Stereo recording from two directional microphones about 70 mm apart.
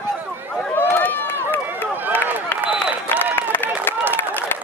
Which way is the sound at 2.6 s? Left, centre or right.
Centre.